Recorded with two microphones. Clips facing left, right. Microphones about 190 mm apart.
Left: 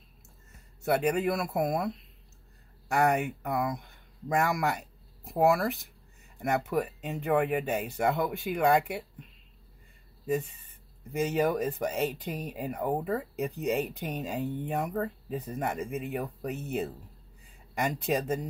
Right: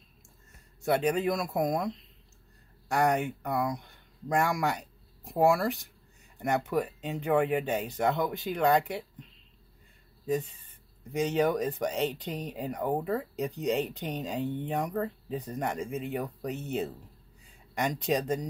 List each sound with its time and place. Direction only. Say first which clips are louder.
0.8 s speech: even; 5° left (ahead or behind)
11.1 s speech: right 1 dB; 5° left (ahead or behind)